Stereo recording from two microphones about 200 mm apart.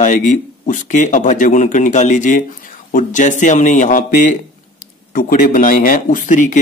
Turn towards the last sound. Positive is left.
turn(degrees=40)  # may be behind; listen again after turning